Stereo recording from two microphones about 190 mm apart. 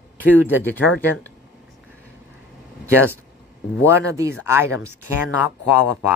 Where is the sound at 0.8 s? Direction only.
80° left.